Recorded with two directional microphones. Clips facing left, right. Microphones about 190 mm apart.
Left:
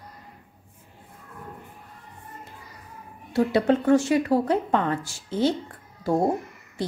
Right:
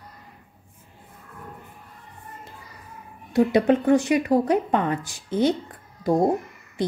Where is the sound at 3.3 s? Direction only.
15° right (ahead or behind).